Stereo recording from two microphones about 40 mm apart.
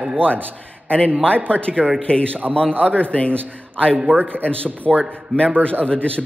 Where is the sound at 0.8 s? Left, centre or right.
Left.